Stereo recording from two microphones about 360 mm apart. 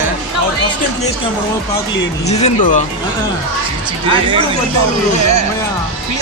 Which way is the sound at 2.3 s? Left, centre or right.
Centre.